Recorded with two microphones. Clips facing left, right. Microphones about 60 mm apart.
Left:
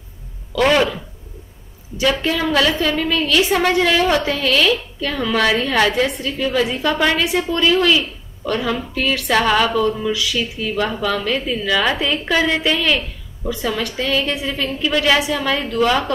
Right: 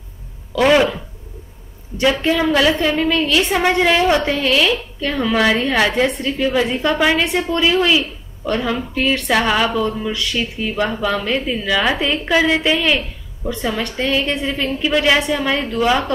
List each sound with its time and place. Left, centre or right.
0.6 s a woman's voice: centre
2.0 s a woman's voice: centre
10.1 s speech: centre
10.6 s a woman's voice: centre
14.6 s a woman's voice: centre